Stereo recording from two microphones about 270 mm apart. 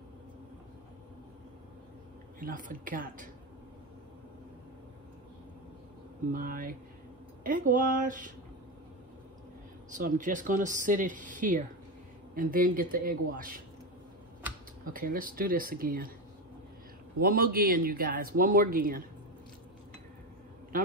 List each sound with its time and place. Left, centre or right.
2.4 s speech: right
6.3 s speech: right
9.8 s speech: right
14.9 s speech: right
17.2 s speech: right